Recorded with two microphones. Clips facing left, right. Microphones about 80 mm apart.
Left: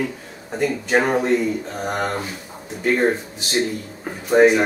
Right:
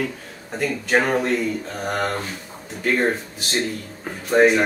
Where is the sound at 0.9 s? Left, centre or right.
Centre.